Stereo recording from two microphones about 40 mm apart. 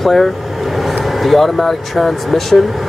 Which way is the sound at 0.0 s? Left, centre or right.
Centre.